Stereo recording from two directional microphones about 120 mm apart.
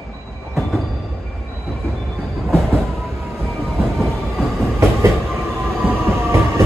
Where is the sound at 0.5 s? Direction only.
Centre (ahead or behind).